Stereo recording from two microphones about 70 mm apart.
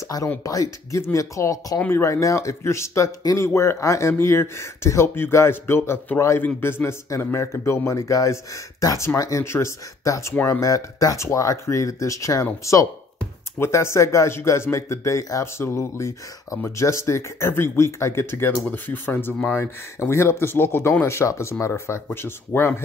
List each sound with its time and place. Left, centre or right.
0.4 s speech: left
13.6 s speech: left
19.6 s speech: left